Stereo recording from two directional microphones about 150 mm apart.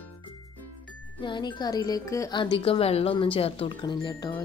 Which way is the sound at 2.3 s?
35° left (ahead or behind).